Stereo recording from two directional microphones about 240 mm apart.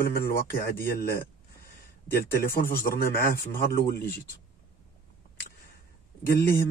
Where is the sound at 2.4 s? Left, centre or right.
Left.